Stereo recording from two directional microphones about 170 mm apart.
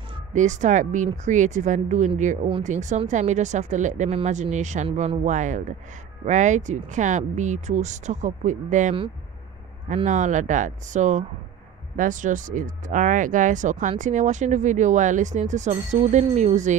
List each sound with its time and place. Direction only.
0.3 s speech: 45° right (ahead or behind)
10.0 s speech: 45° right (ahead or behind)